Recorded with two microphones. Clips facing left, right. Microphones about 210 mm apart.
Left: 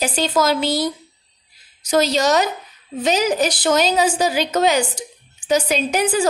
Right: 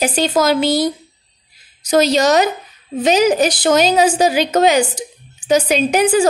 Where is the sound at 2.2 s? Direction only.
80° right.